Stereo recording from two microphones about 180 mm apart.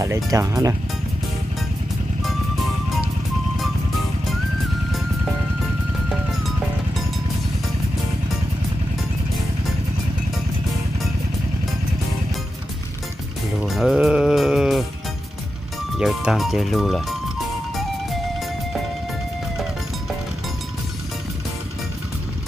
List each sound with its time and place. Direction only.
0.0 s speech: 15° right (ahead or behind)
13.6 s music: 5° right (ahead or behind)
16.0 s speech: 5° right (ahead or behind)